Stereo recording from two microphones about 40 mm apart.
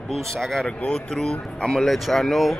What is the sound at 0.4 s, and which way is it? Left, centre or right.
Speech, centre.